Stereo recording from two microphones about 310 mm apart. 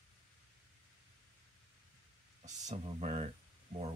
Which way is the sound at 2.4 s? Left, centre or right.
Right.